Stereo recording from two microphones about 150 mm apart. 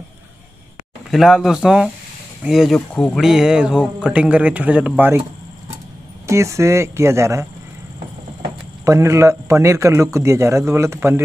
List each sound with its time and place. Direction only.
1.1 s speech: centre (ahead or behind)
2.9 s speech: 10° left (ahead or behind)
3.2 s a man's voice: 5° right (ahead or behind)
6.2 s a man's voice: 20° right (ahead or behind)
8.8 s a man's voice: 20° right (ahead or behind)